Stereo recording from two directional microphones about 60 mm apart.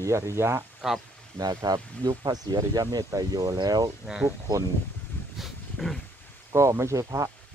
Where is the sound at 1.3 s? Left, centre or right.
Right.